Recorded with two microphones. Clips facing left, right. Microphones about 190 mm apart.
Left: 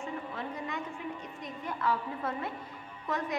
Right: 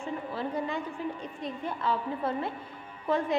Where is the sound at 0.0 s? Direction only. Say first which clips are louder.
Right 4 dB; 30° right (ahead or behind).